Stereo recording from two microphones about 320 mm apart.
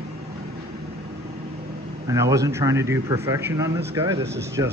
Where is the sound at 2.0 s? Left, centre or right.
Centre.